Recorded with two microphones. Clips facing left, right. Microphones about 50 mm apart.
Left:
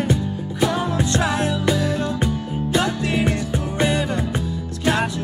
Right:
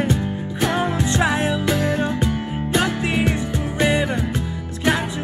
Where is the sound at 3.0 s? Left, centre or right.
Right.